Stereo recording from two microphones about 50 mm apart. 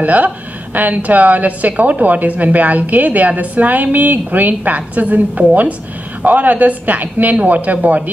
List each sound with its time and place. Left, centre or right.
0.0 s a woman's voice: right